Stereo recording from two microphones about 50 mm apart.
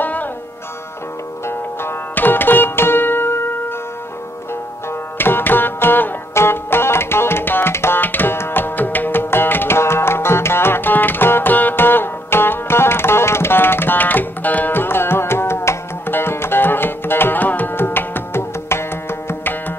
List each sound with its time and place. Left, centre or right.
0.0 s sitar: left
1.5 s music: left
5.1 s music: left
7.7 s tabla: left
8.0 s tabla: left
8.4 s music: left
16.1 s music: left